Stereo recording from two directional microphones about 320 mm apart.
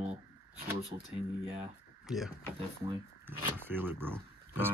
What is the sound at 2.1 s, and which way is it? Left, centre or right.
Speech, centre.